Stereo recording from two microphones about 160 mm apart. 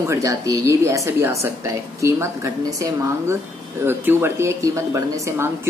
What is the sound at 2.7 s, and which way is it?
A woman's voice, 20° right (ahead or behind).